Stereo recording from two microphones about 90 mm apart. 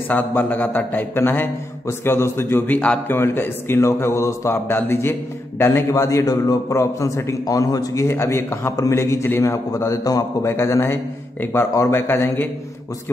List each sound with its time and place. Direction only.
0.1 s a man's voice: 20° left (ahead or behind)